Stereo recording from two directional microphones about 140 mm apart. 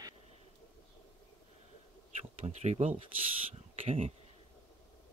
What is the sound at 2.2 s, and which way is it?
Speech, 55° right (ahead or behind).